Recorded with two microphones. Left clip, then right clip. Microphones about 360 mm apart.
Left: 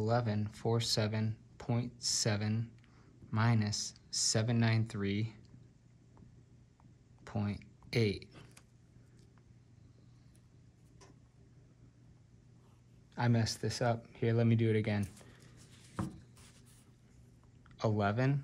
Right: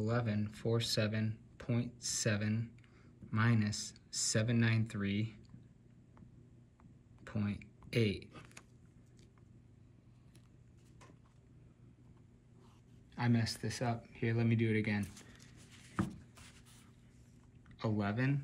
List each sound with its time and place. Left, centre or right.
0.0 s speech: centre
7.2 s speech: centre
13.1 s speech: centre
17.6 s speech: left